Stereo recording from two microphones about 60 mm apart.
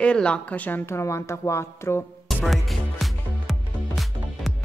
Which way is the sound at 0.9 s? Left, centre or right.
Left.